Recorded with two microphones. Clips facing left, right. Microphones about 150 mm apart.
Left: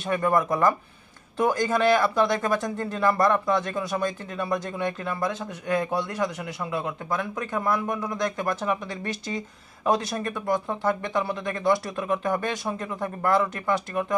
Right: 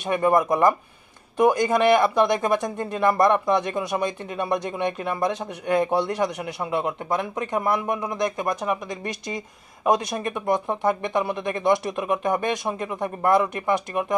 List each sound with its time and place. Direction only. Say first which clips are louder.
0.0 s speech: right 3 dB; 20° right (ahead or behind)